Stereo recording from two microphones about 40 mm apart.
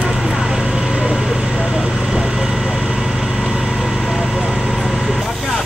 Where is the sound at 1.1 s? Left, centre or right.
Centre.